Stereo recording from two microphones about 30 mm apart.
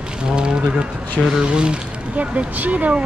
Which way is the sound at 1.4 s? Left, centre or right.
Right.